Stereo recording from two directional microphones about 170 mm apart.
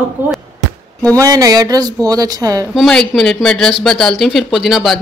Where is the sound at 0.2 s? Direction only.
10° right (ahead or behind).